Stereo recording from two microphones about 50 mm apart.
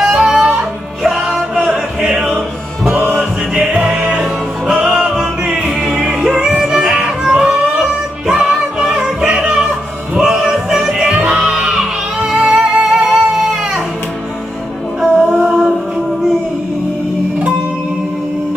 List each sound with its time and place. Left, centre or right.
0.0 s music: centre
1.6 s music: centre
3.8 s music: centre
15.1 s music: centre